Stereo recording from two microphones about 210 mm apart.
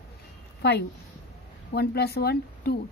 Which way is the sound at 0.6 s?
50° left (ahead or behind).